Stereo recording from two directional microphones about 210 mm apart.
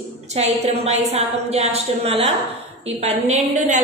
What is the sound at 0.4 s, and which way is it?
A woman's voice, 30° right (ahead or behind).